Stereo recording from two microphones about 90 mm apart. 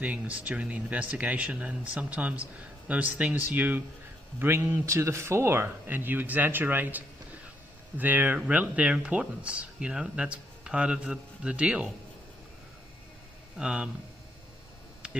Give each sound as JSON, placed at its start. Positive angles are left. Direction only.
{"t": 0.0, "sound": "a man's voice", "side_deg": -15}
{"t": 13.6, "sound": "speech", "side_deg": -10}